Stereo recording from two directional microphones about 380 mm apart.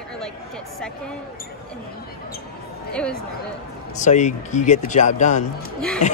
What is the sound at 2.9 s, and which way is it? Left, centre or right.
Speech, centre.